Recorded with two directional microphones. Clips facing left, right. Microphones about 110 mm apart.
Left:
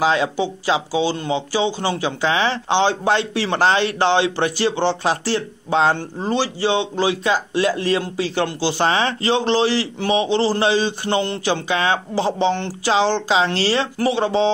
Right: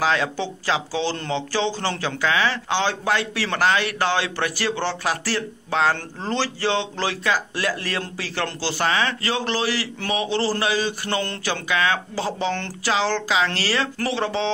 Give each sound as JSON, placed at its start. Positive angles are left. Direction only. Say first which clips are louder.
{"t": 0.0, "sound": "speech", "louder": "left 4 dB", "side_deg": 20}